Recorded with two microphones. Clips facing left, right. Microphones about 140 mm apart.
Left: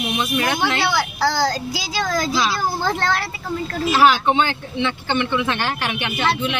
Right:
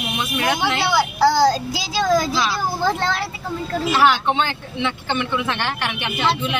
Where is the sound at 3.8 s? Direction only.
5° left (ahead or behind).